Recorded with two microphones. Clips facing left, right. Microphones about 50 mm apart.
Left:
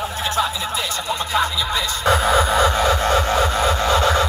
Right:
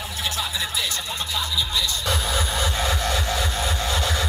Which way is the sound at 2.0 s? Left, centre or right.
Left.